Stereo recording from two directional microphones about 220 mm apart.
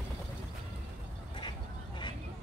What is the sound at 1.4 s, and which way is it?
Vehicle, 20° left (ahead or behind).